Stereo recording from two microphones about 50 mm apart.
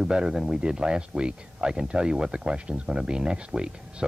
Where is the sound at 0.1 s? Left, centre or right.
Centre.